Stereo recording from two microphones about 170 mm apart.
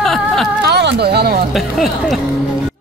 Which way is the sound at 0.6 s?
75° right (ahead or behind).